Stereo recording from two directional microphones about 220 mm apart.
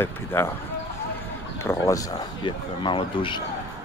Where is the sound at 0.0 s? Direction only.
10° left (ahead or behind).